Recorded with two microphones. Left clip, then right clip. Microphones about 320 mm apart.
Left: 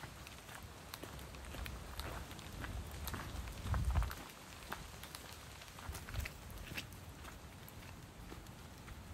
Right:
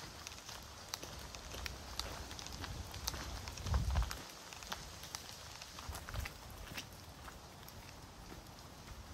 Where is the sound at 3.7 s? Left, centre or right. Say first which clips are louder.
Even; centre.